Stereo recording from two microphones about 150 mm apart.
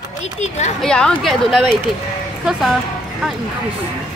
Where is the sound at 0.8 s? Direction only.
5° left (ahead or behind).